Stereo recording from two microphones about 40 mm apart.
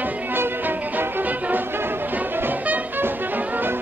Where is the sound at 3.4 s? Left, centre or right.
Right.